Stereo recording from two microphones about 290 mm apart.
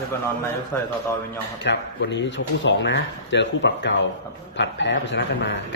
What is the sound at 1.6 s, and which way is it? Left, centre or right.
Speech, left.